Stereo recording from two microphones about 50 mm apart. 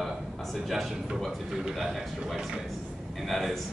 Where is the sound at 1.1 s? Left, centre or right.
Centre.